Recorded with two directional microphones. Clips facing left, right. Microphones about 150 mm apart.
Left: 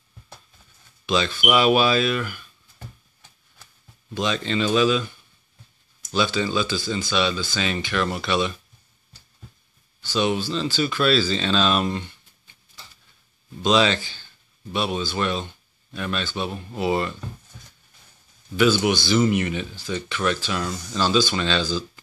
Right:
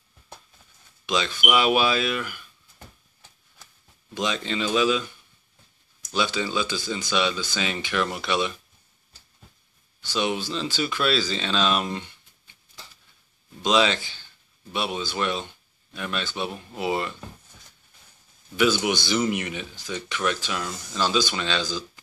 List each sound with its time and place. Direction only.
1.0 s speech: 15° right (ahead or behind)
4.1 s speech: 15° right (ahead or behind)
6.1 s speech: 15° right (ahead or behind)
10.0 s speech: 15° right (ahead or behind)
13.6 s speech: 15° right (ahead or behind)
19.0 s speech: 15° right (ahead or behind)